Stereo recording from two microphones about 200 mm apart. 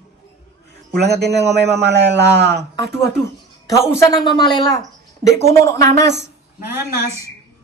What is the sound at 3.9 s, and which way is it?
Speech, 20° left (ahead or behind).